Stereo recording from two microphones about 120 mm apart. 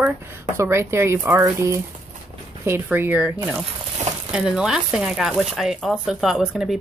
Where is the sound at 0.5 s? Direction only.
25° right (ahead or behind).